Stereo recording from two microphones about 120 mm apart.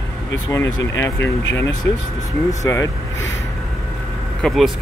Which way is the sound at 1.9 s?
20° left (ahead or behind).